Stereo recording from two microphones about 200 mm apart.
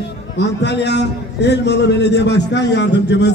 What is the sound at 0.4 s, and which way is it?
A man's voice, 60° left (ahead or behind).